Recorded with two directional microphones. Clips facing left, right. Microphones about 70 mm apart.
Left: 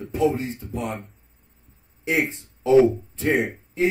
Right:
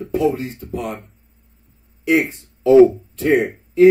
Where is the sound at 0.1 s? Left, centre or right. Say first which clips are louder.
Right 3 dB; right.